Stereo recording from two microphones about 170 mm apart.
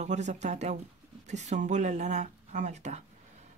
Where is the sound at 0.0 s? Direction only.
45° right (ahead or behind).